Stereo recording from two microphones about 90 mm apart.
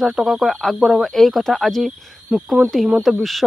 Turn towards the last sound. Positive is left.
turn(degrees=0)  # may be behind; listen again after turning